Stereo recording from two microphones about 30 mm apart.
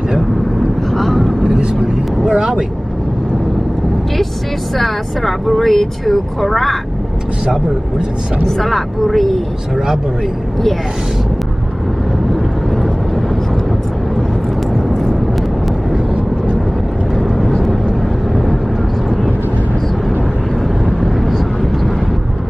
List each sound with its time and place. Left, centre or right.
0.6 s vehicle: centre
1.6 s vehicle: right
4.7 s speech: centre
8.5 s speech: centre
14.7 s vehicle: centre
17.4 s vehicle: centre
21.0 s vehicle: centre